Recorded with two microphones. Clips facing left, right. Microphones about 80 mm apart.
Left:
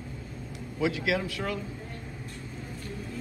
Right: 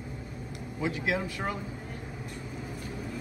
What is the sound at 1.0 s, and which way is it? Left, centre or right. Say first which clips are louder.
Speech: left 2 dB; left.